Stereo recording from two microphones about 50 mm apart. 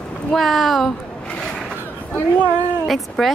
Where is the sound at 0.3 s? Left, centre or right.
Centre.